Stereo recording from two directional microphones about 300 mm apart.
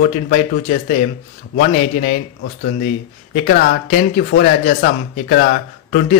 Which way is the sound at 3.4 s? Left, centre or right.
Left.